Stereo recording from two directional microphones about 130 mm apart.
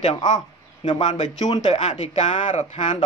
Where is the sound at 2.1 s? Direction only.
70° left (ahead or behind).